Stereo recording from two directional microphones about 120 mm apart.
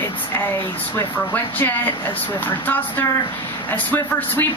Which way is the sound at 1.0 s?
15° left (ahead or behind).